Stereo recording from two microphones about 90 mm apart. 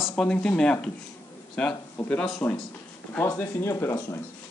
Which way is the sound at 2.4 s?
25° left (ahead or behind).